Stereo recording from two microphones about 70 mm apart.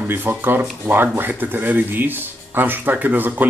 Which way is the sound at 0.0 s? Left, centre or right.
Right.